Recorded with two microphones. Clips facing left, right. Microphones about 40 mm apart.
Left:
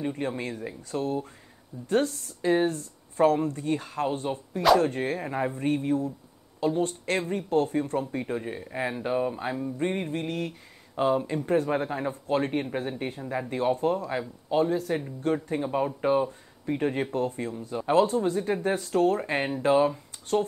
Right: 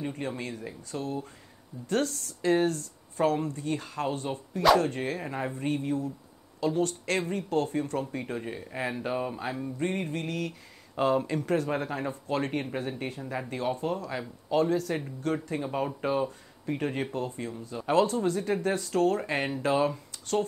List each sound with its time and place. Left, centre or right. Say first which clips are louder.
0.4 s a man's voice: left 3 dB; left
3.4 s speech: left 3 dB; left
4.3 s speech: left 1 dB; centre
4.8 s speech: left 3 dB; left
5.2 s speech: left 4 dB; centre
5.5 s a man's voice: left 3 dB; left
8.4 s speech: left 2 dB; centre
9.8 s speech: left 1 dB; left
12.1 s a man's voice: left 5 dB; left
12.7 s speech: left 2 dB; centre
13.5 s speech: left 6 dB; centre
17.1 s a man's voice: left 4 dB; left; by 18.8 s centre
18.8 s speech: left 2 dB; left